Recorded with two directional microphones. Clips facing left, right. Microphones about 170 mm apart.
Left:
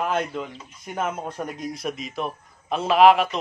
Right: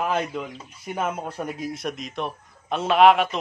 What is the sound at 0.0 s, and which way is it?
Speech, 5° right (ahead or behind).